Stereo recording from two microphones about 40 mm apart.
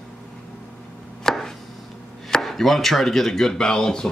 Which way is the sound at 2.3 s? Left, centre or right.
Centre.